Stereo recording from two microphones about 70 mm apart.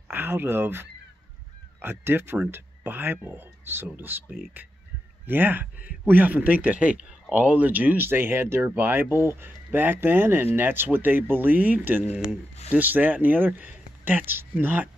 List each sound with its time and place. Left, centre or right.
0.1 s speech: right